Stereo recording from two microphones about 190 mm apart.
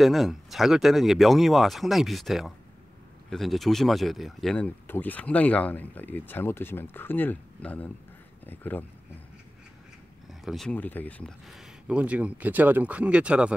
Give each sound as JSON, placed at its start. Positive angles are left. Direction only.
{"t": 0.0, "sound": "speech", "side_deg": 0}
{"t": 10.4, "sound": "speech", "side_deg": 0}